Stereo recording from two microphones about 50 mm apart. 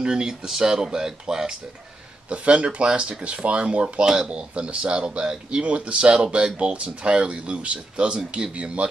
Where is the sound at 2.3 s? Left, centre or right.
Right.